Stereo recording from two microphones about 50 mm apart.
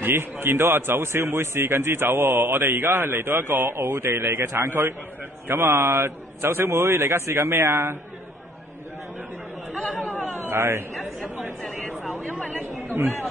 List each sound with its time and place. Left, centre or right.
0.0 s a man's voice: right
10.4 s speech: right
12.4 s chatter: left